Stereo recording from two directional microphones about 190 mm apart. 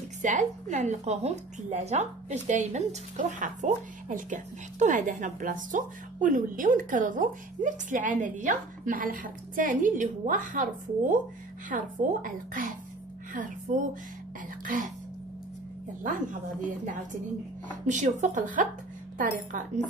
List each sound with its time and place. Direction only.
0.2 s a woman's voice: 40° right (ahead or behind)
16.0 s a woman's voice: 45° right (ahead or behind)
17.6 s a woman's voice: 40° right (ahead or behind)